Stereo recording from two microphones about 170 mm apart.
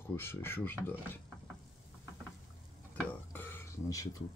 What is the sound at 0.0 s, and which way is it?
Speech, 15° left (ahead or behind).